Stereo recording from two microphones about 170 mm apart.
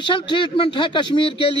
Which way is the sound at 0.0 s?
30° left (ahead or behind).